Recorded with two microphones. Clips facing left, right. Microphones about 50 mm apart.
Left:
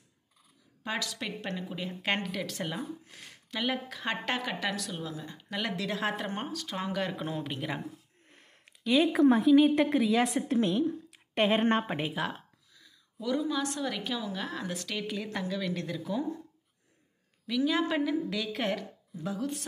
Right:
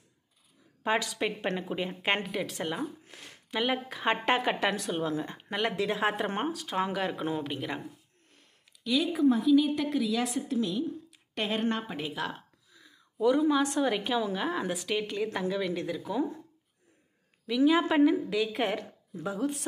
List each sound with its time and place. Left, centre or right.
0.8 s a woman's voice: right
2.8 s speech: right
3.4 s a woman's voice: centre; by 5.5 s right
5.5 s a woman's voice: right
6.5 s a woman's voice: centre
7.4 s speech: centre
8.3 s a sound: left
9.1 s a woman's voice: left
9.5 s a woman's voice: left
12.1 s speech: centre
12.7 s a woman's voice: right
17.6 s a woman's voice: centre